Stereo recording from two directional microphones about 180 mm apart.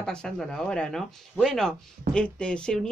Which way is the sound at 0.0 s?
5° left (ahead or behind).